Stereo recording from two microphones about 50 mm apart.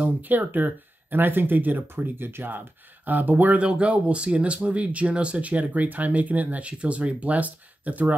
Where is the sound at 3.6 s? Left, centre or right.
Right.